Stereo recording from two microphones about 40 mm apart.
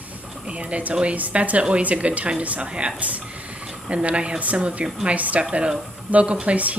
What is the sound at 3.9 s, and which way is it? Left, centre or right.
Speech, right.